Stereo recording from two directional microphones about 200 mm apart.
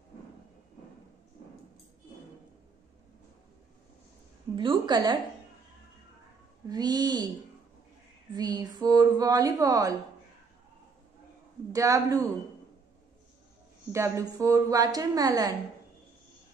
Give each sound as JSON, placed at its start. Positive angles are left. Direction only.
{"t": 4.6, "sound": "a woman's voice", "side_deg": -20}
{"t": 6.7, "sound": "a woman's voice", "side_deg": -20}
{"t": 8.4, "sound": "a woman's voice", "side_deg": -20}
{"t": 11.7, "sound": "a woman's voice", "side_deg": -15}
{"t": 13.9, "sound": "a woman's voice", "side_deg": -15}